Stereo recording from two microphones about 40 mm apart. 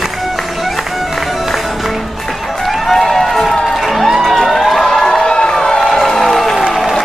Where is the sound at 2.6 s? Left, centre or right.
Centre.